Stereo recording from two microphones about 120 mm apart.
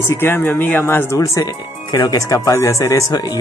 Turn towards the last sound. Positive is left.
turn(degrees=30)  # may be behind; listen again after turning